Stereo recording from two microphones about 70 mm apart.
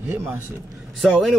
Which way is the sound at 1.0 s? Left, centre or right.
Centre.